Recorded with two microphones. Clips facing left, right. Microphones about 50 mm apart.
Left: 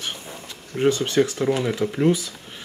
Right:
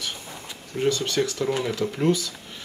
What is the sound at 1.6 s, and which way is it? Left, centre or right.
Speech, centre.